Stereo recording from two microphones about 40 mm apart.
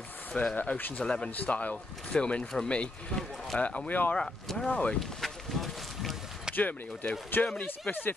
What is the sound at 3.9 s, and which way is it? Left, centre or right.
Speech, left.